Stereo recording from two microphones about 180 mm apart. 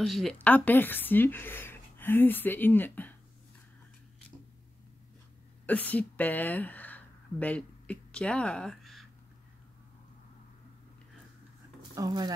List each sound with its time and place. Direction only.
0.0 s a woman's voice: centre (ahead or behind)
5.7 s speech: 10° left (ahead or behind)
11.9 s speech: 20° right (ahead or behind)